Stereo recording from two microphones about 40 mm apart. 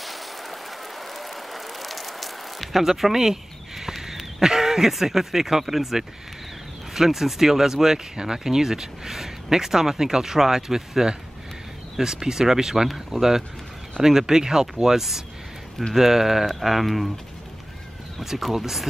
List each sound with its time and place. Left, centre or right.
0.0 s a sound: centre
6.9 s speech: centre
18.4 s speech: centre